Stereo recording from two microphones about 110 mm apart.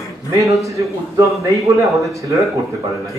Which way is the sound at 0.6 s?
30° right (ahead or behind).